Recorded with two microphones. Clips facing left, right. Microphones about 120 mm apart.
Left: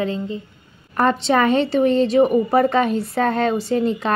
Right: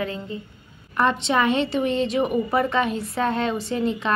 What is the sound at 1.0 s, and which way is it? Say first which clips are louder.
A woman's voice: left 4 dB; 40° left (ahead or behind).